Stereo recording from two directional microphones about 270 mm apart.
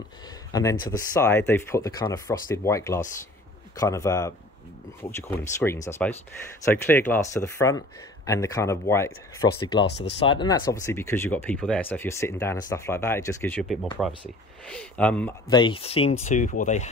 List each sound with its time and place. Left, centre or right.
0.5 s speech: centre
9.8 s speech: left
10.1 s speech: centre
15.5 s speech: centre